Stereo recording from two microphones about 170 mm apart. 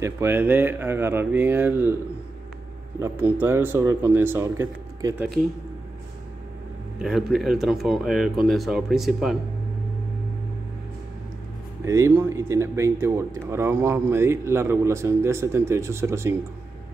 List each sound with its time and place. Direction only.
0.0 s speech: 15° right (ahead or behind)
3.0 s speech: 10° right (ahead or behind)
7.0 s speech: centre (ahead or behind)
11.8 s speech: 20° right (ahead or behind)